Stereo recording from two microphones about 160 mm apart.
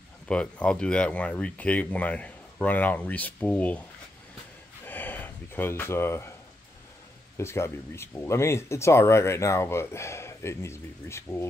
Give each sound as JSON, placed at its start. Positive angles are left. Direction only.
{"t": 0.3, "sound": "speech", "side_deg": 5}
{"t": 4.8, "sound": "a sound", "side_deg": 10}
{"t": 7.3, "sound": "speech", "side_deg": 15}